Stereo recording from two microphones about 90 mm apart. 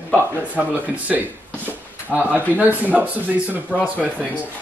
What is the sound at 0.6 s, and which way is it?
Speech, 15° right (ahead or behind).